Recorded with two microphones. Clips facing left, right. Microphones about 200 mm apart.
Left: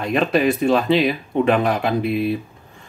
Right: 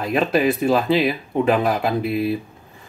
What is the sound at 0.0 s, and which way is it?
Speech, centre (ahead or behind).